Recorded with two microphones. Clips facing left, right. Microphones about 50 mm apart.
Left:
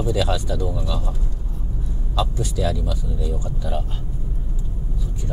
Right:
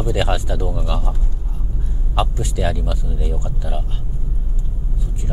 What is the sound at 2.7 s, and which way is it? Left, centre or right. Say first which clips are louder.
Speech: right 1 dB; right.